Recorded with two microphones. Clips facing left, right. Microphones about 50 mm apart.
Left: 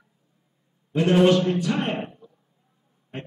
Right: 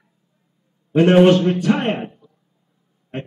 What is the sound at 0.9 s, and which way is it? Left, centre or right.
A man's voice, right.